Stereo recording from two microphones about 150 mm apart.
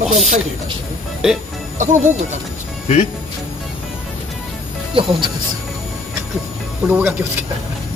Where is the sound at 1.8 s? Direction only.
55° right (ahead or behind).